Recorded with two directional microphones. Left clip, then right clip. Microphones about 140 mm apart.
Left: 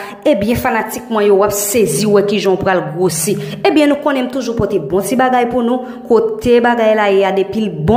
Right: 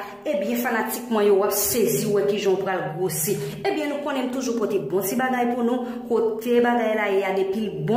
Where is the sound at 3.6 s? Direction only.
35° left (ahead or behind).